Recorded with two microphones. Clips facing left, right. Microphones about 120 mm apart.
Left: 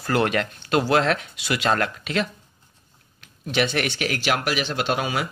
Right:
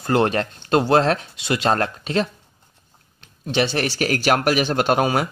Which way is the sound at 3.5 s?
30° right (ahead or behind).